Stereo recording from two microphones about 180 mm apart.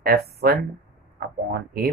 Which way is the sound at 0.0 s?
60° right (ahead or behind).